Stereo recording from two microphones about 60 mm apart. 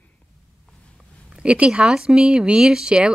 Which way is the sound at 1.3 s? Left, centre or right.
Centre.